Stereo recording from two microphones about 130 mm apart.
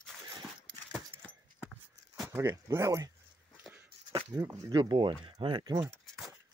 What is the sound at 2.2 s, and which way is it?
Speech, 20° right (ahead or behind).